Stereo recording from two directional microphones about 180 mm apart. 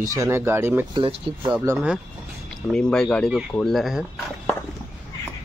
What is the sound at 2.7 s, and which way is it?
Speech, 5° left (ahead or behind).